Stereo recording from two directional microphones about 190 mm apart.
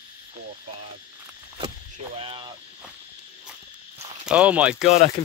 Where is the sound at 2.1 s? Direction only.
25° right (ahead or behind).